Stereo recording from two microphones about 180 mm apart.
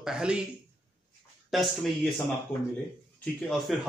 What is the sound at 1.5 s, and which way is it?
Speech, centre (ahead or behind).